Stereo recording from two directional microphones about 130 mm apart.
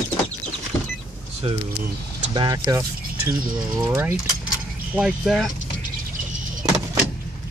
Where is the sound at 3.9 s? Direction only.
20° right (ahead or behind).